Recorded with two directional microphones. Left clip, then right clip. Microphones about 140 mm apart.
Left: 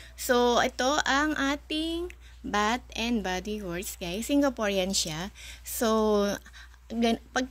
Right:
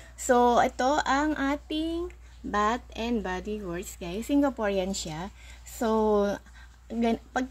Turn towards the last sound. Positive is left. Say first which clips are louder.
# left 1 dB
turn(degrees=-5)  # may be behind; listen again after turning